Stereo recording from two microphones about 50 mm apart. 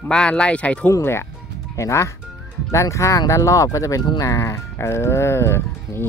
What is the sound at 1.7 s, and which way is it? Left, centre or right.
Speech, left.